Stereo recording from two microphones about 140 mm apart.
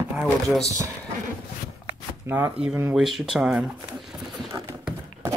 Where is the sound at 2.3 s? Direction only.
15° right (ahead or behind).